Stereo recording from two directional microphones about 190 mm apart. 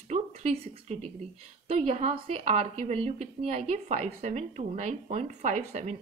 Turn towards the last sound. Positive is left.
turn(degrees=-35)  # may be behind; listen again after turning